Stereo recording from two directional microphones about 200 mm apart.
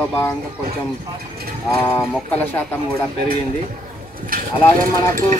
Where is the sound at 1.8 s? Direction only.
10° left (ahead or behind).